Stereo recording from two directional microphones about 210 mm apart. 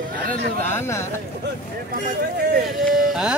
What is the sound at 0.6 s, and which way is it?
Speech, 10° left (ahead or behind).